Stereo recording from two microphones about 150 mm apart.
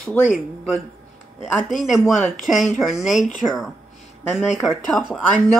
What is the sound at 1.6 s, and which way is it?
Speech, centre (ahead or behind).